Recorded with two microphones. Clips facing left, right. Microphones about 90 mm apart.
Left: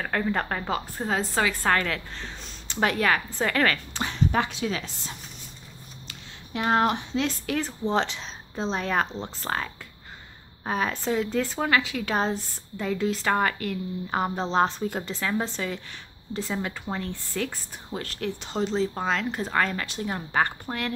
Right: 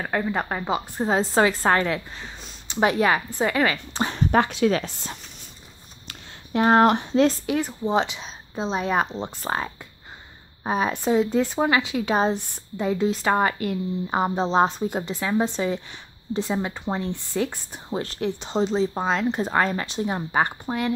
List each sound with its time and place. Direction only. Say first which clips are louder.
0.0 s a woman's voice: right 1 dB; 10° right (ahead or behind)
3.9 s speech: right 5 dB; 35° right (ahead or behind)
4.3 s speech: right 7 dB; 55° right (ahead or behind)
6.0 s a sound: right 6 dB; 40° right (ahead or behind)
6.9 s speech: right 8 dB; 50° right (ahead or behind)
7.4 s a woman's voice: right 3 dB; 10° right (ahead or behind)